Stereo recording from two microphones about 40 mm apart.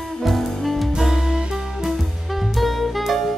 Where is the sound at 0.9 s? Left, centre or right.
Centre.